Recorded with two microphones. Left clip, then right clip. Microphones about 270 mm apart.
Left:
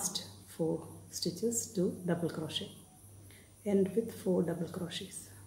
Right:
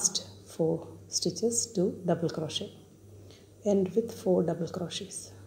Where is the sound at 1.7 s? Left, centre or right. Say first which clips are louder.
Right 6 dB; centre.